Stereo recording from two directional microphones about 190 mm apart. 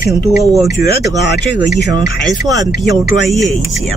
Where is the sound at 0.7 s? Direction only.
65° left (ahead or behind).